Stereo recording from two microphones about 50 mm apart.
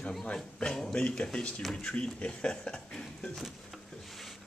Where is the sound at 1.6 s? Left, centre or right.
Centre.